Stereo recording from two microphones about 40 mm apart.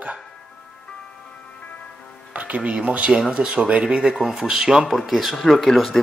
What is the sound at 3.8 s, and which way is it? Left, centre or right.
Speech, centre.